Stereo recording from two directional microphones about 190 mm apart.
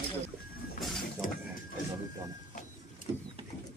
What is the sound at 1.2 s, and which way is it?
Speech, 45° left (ahead or behind).